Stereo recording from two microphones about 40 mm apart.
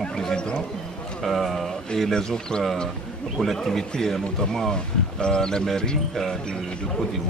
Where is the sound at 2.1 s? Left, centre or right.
Centre.